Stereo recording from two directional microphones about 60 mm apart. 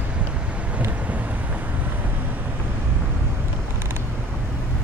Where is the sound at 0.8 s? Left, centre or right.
Right.